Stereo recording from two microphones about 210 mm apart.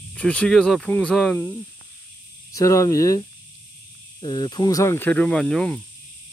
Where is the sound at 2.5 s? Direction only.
15° left (ahead or behind).